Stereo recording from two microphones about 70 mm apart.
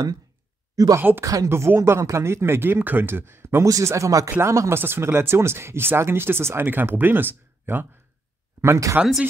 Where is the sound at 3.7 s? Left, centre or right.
Right.